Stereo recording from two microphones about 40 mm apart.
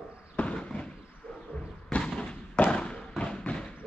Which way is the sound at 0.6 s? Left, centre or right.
Centre.